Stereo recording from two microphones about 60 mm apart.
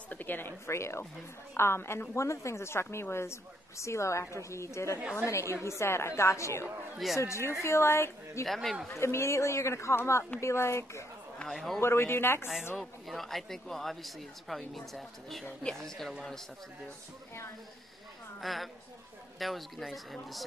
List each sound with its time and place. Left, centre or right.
0.1 s speech: left
0.7 s speech: left
2.1 s speech: left
8.5 s speech: centre
8.9 s speech: left
11.4 s speech: centre
11.8 s speech: left
12.7 s speech: centre
18.4 s a woman's voice: centre